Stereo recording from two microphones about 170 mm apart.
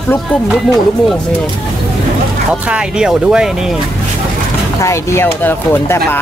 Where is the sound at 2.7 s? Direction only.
5° right (ahead or behind).